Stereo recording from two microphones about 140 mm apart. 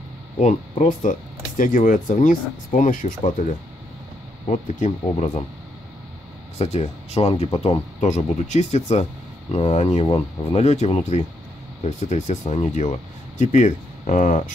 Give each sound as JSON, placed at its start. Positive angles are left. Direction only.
{"t": 0.4, "sound": "speech", "side_deg": 60}
{"t": 6.6, "sound": "speech", "side_deg": 50}